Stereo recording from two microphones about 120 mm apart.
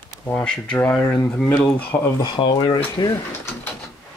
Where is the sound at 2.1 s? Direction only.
40° left (ahead or behind).